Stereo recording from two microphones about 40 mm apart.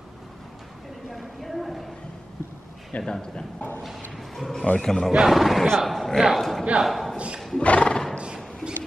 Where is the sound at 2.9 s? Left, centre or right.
Left.